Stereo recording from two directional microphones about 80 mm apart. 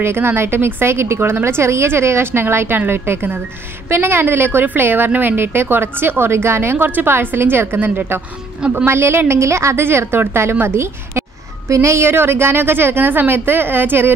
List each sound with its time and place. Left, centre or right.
0.0 s a woman's voice: right
8.5 s a woman's voice: centre
8.8 s a woman's voice: right